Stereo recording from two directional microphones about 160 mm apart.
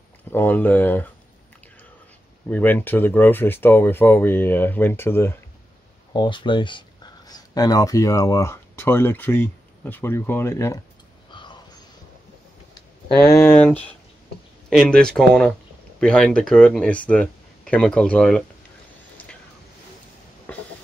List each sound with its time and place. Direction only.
0.3 s speech: 10° left (ahead or behind)
2.5 s speech: 10° left (ahead or behind)
6.1 s speech: 30° left (ahead or behind)
13.3 s speech: 15° left (ahead or behind)
20.5 s a sound: 10° left (ahead or behind)